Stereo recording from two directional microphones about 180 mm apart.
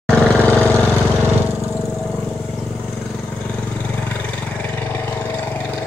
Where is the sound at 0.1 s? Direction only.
5° left (ahead or behind).